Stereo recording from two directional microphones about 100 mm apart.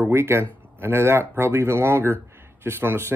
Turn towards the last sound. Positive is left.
turn(degrees=-25)  # may be behind; listen again after turning